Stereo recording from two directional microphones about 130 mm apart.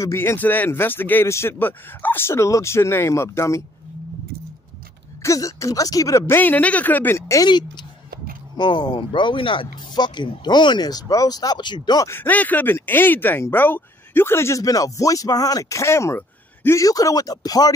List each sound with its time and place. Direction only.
0.0 s speech: 20° left (ahead or behind)
5.2 s speech: 25° left (ahead or behind)
7.4 s speech: 35° left (ahead or behind)
12.1 s speech: 15° left (ahead or behind); by 17.7 s 30° left (ahead or behind)